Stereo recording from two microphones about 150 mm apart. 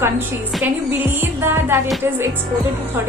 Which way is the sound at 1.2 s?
15° right (ahead or behind).